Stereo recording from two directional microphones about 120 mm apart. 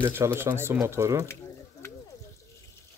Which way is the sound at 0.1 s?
20° right (ahead or behind).